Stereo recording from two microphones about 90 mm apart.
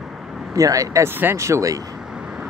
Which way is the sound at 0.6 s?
40° right (ahead or behind).